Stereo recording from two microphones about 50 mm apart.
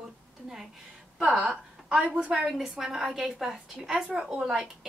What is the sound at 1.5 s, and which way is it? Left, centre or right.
A woman's voice, centre.